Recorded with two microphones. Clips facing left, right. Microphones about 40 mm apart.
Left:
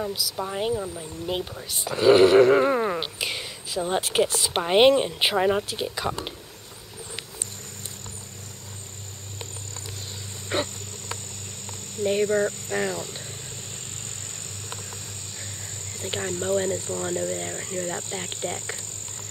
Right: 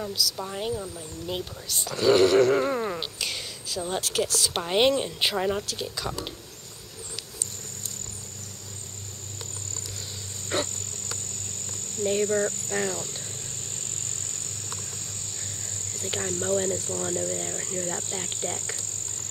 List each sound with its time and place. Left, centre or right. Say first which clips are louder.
0.0 s speech: left 1 dB; centre
10.5 s wild animals: left 2 dB; centre
11.6 s speech: left 2 dB; centre
15.3 s cricket: even; left